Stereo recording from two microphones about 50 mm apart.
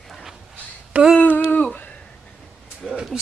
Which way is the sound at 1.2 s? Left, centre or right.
Left.